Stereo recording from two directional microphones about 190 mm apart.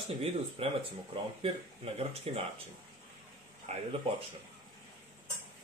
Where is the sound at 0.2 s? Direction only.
30° right (ahead or behind).